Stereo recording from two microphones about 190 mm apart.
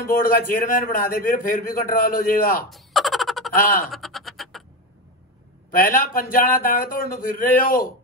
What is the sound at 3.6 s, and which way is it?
Speech, 50° left (ahead or behind).